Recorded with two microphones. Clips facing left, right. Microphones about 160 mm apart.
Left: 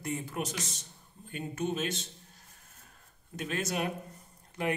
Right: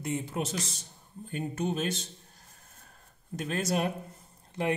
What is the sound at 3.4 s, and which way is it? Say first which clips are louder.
A man's voice: right 3 dB; 35° right (ahead or behind).